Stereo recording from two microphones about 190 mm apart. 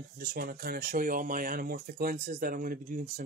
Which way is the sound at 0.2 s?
55° right (ahead or behind).